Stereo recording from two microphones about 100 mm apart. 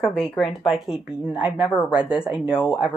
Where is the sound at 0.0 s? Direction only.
5° left (ahead or behind).